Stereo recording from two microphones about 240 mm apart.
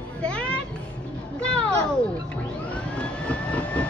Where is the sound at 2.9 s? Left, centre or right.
Centre.